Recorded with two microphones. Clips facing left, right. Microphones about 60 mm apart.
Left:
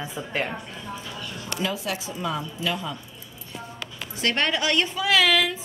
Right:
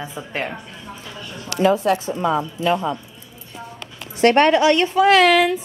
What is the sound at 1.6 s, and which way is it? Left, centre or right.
Speech, right.